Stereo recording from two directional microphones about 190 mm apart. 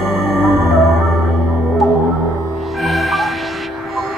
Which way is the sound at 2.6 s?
Centre (ahead or behind).